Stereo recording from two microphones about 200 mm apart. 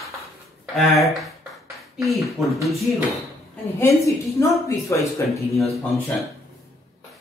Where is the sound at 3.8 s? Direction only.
15° left (ahead or behind).